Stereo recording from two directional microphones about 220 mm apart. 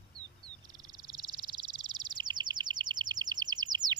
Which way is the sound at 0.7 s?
20° right (ahead or behind).